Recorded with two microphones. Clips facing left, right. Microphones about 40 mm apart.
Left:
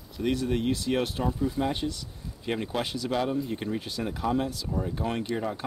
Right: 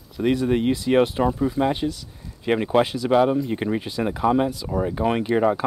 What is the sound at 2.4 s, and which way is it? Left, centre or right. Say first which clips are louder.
Speech: right 11 dB; right.